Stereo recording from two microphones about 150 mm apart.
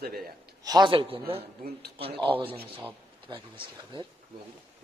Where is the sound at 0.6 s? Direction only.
25° right (ahead or behind).